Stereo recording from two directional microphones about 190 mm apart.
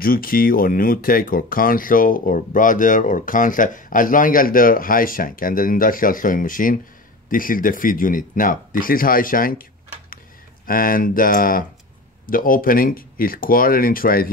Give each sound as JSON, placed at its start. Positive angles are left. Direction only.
{"t": 0.0, "sound": "speech", "side_deg": 50}